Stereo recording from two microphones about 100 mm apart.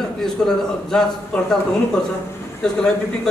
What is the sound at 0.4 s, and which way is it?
A man's voice, 5° left (ahead or behind).